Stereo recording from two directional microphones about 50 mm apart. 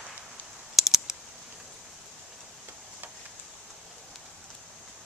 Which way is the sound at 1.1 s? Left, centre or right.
Centre.